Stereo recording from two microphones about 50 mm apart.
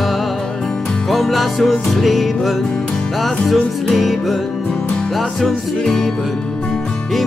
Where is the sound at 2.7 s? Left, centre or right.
Centre.